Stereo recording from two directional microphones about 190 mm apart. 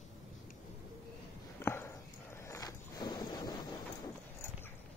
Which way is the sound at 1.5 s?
10° left (ahead or behind).